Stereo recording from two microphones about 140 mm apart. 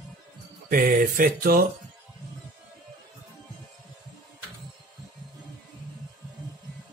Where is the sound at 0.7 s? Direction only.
85° right.